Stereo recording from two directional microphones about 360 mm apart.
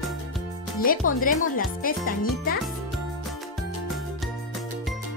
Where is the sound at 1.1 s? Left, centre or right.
Left.